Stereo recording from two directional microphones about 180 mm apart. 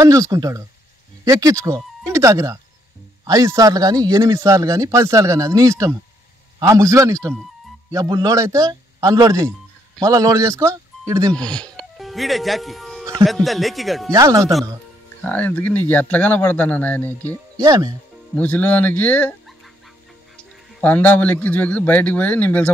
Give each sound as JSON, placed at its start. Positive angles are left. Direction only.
{"t": 0.0, "sound": "speech", "side_deg": -20}
{"t": 11.3, "sound": "speech", "side_deg": 5}
{"t": 14.1, "sound": "speech", "side_deg": -20}
{"t": 15.2, "sound": "a man's voice", "side_deg": 10}
{"t": 17.6, "sound": "speech", "side_deg": -20}
{"t": 18.3, "sound": "speech", "side_deg": 10}
{"t": 20.8, "sound": "a man's voice", "side_deg": 10}